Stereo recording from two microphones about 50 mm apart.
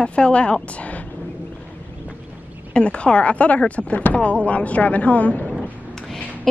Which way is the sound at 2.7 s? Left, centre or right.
Left.